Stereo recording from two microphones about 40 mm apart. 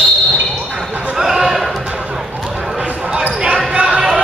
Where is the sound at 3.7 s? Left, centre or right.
Right.